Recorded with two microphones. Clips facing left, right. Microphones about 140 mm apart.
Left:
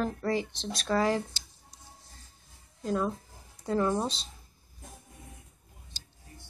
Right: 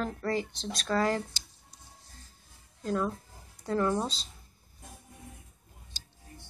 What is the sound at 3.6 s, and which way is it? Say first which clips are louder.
Speech: left 1 dB; 15° left (ahead or behind).